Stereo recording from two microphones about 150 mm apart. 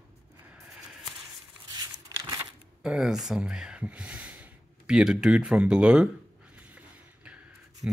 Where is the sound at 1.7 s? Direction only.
25° right (ahead or behind).